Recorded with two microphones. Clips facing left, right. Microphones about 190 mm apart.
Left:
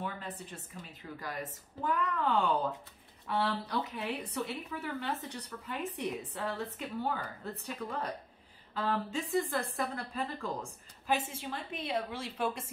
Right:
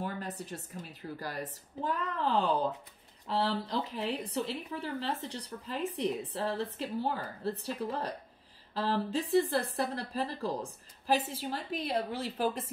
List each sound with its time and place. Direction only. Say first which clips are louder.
0.0 s speech: right 3 dB; 40° right (ahead or behind)
3.9 s speech: right 3 dB; 30° right (ahead or behind)